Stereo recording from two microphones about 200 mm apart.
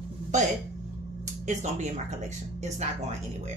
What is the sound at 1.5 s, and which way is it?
Speech, 35° right (ahead or behind).